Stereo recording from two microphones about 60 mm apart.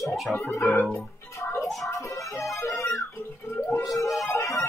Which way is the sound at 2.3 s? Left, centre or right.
Centre.